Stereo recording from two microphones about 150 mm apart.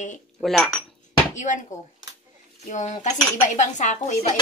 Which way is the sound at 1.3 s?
55° left (ahead or behind).